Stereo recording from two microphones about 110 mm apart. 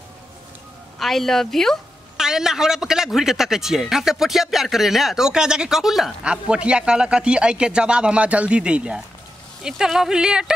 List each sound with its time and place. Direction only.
0.9 s a woman's voice: centre (ahead or behind)